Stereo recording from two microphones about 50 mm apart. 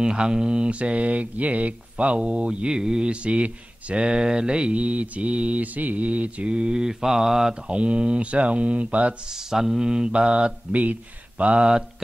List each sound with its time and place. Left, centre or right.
0.0 s mantra: centre
9.3 s mantra: centre